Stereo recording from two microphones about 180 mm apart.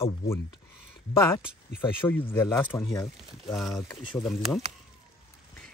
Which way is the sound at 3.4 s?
Centre (ahead or behind).